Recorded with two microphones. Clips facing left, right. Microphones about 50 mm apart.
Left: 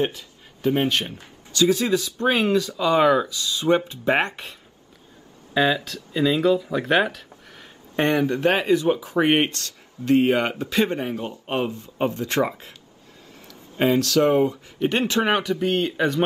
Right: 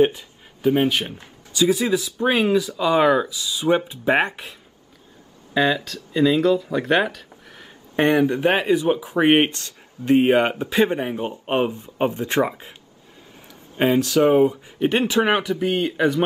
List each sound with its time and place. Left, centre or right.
0.0 s speech: right
0.6 s speech: centre
13.7 s speech: centre